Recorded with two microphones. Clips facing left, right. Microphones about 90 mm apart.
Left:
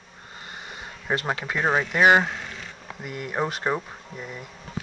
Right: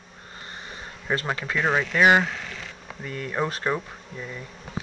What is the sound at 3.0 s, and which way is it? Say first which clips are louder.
Speech: even; 15° left (ahead or behind).